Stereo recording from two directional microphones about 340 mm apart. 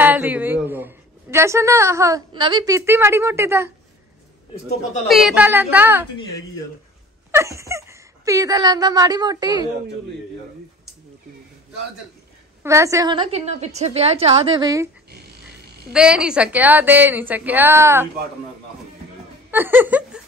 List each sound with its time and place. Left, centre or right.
0.0 s a woman's voice: centre
5.0 s a woman's voice: centre
7.2 s speech: centre
12.6 s speech: centre
15.9 s a woman's voice: centre
19.5 s speech: centre